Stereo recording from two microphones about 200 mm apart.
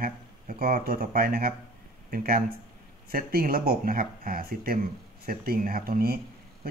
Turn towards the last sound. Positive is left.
turn(degrees=-50)  # may be behind; listen again after turning